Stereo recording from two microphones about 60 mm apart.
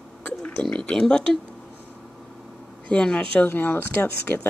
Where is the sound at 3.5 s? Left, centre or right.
Left.